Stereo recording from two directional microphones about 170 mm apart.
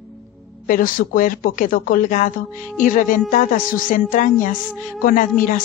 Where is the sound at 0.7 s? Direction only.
55° left (ahead or behind).